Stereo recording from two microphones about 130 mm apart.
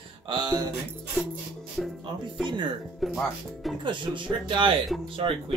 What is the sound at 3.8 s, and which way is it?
Speech, 40° right (ahead or behind).